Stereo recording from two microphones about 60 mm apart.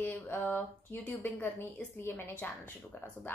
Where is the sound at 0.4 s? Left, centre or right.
Left.